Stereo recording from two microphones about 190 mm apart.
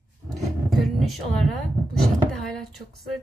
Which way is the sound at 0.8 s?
Centre (ahead or behind).